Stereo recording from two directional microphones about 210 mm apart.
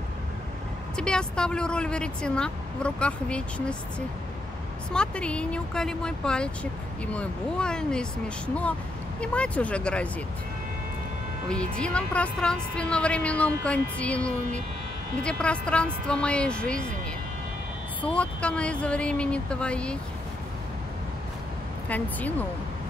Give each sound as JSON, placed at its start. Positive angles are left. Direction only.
{"t": 0.9, "sound": "a woman's voice", "side_deg": 5}
{"t": 4.9, "sound": "a woman's voice", "side_deg": 5}
{"t": 9.2, "sound": "a woman's voice", "side_deg": 5}
{"t": 11.4, "sound": "a woman's voice", "side_deg": 5}
{"t": 18.0, "sound": "a woman's voice", "side_deg": 5}
{"t": 21.8, "sound": "speech", "side_deg": 5}